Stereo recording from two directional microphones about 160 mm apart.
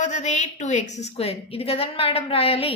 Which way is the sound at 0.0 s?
50° left (ahead or behind).